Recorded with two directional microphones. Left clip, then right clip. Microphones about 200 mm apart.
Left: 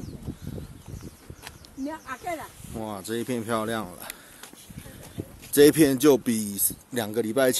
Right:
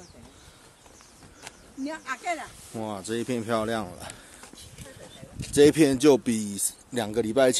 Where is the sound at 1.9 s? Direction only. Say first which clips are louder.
Right 2 dB; 30° right (ahead or behind).